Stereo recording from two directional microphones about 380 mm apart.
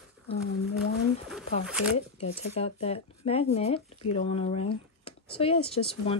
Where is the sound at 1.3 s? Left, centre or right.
Centre.